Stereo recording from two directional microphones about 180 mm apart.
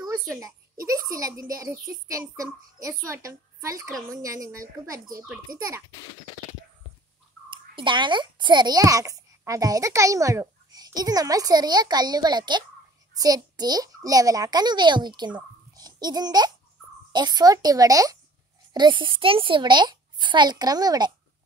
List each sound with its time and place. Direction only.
0.8 s a sound: 20° right (ahead or behind)
1.5 s a child's voice: 20° right (ahead or behind)
7.4 s a child's voice: 30° right (ahead or behind)